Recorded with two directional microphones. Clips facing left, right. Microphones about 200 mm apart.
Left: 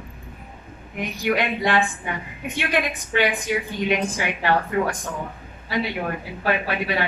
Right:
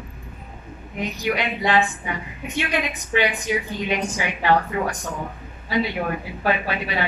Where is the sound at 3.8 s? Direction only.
55° left (ahead or behind).